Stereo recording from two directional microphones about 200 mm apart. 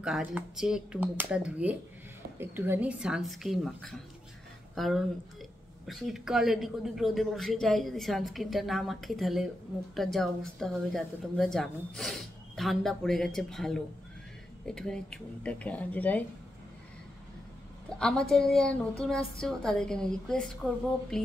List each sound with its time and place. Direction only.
0.0 s a woman's voice: 5° right (ahead or behind)
17.8 s a woman's voice: 5° left (ahead or behind)